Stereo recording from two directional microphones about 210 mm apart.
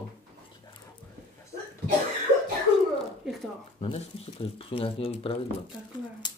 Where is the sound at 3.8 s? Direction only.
25° left (ahead or behind).